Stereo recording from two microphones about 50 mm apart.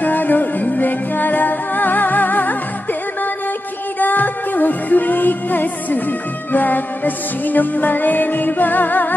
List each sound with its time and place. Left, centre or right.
0.0 s music: left
4.0 s music: left